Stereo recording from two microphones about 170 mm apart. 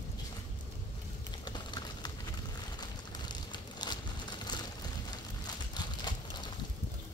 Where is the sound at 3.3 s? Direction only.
25° left (ahead or behind).